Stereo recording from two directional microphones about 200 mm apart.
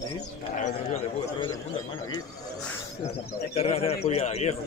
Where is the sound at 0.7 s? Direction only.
35° left (ahead or behind).